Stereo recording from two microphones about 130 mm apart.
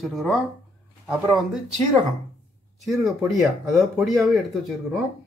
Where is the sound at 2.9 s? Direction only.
Centre (ahead or behind).